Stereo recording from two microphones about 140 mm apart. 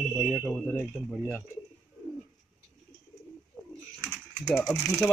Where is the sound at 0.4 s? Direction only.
5° right (ahead or behind).